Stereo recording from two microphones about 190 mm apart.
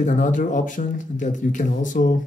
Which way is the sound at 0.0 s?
40° left (ahead or behind).